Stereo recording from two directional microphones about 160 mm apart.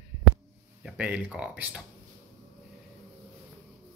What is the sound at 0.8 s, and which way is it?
Speech, 10° right (ahead or behind).